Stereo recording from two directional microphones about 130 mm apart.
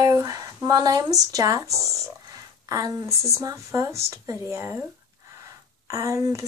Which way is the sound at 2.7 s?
25° right (ahead or behind).